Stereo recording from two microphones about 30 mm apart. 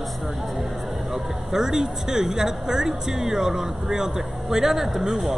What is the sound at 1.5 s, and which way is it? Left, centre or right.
A man's voice, centre.